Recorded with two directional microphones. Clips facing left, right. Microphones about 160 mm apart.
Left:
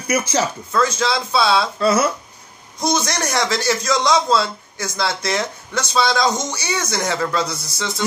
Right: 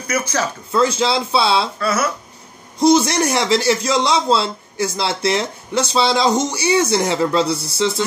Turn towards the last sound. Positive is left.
turn(degrees=-30)  # may be behind; listen again after turning